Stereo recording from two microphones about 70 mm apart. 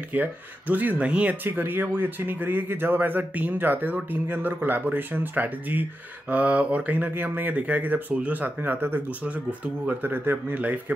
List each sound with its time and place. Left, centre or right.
0.1 s speech: right